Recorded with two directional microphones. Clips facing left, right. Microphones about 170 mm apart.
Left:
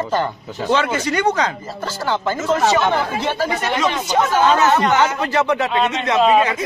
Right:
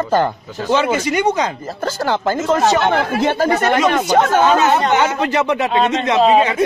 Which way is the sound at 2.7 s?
55° right (ahead or behind).